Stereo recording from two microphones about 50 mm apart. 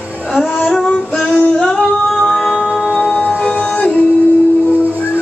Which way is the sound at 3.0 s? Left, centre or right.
Left.